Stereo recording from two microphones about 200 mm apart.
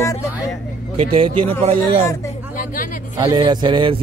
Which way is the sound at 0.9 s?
30° right (ahead or behind).